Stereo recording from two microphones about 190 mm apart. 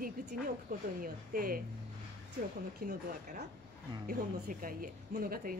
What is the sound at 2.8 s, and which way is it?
A woman's voice, 40° right (ahead or behind).